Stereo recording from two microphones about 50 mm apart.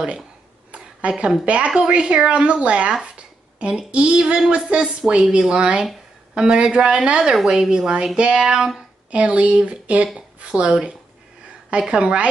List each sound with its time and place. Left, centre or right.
0.7 s a sound: right
1.4 s speech: right; by 8.8 s centre
9.1 s speech: right